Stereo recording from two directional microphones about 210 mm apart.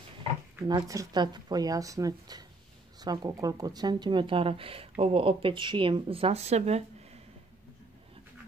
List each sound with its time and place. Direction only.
0.7 s speech: 20° right (ahead or behind)